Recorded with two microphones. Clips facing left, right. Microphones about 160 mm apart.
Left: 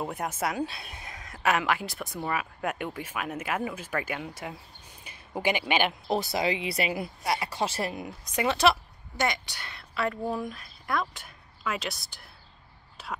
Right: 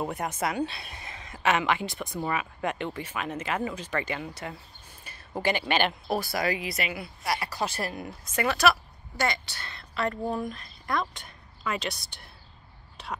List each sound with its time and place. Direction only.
0.0 s a woman's voice: centre (ahead or behind)
6.0 s speech: 20° left (ahead or behind)
7.2 s a woman's voice: 25° left (ahead or behind); by 12.3 s centre (ahead or behind)